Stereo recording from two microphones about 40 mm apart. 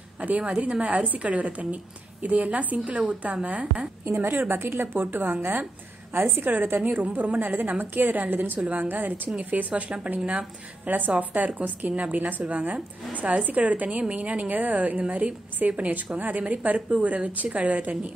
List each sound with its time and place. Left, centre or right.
0.2 s a woman's voice: right
4.0 s a woman's voice: right
4.9 s a woman's voice: right
5.2 s a woman's voice: right
6.1 s a woman's voice: right
6.5 s a woman's voice: right
6.8 s a woman's voice: right
9.4 s a woman's voice: right
14.5 s a woman's voice: right